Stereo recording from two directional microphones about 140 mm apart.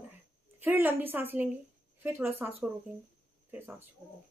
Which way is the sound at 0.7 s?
15° right (ahead or behind).